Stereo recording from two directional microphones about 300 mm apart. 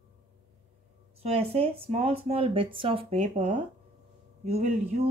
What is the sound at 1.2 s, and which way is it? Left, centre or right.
Speech, centre.